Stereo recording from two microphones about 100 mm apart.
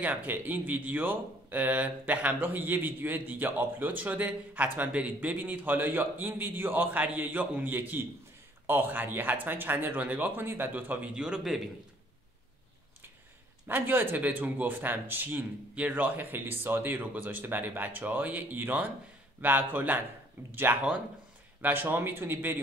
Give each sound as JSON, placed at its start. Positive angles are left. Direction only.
{"t": 0.0, "sound": "speech", "side_deg": -20}
{"t": 11.1, "sound": "speech", "side_deg": -5}
{"t": 13.7, "sound": "speech", "side_deg": -20}
{"t": 21.5, "sound": "speech", "side_deg": -20}